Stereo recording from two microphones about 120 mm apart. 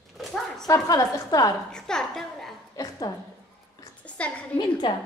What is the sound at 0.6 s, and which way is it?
Speech, 30° left (ahead or behind).